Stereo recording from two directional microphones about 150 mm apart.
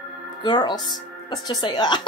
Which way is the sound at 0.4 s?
30° left (ahead or behind).